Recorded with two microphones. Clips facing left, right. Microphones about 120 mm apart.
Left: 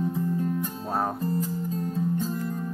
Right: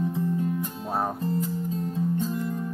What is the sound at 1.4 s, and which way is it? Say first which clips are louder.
Music: even; 40° left (ahead or behind).